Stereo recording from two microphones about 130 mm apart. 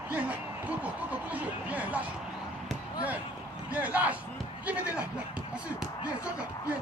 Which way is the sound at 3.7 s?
10° right (ahead or behind).